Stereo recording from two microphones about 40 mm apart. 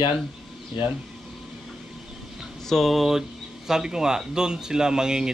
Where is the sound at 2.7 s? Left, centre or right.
Centre.